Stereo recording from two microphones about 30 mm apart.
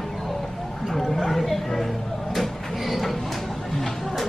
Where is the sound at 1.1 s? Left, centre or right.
Centre.